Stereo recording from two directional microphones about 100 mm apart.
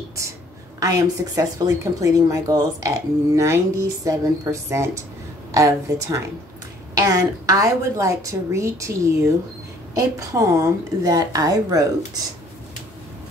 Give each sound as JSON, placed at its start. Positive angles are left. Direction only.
{"t": 0.7, "sound": "a woman's voice", "side_deg": -35}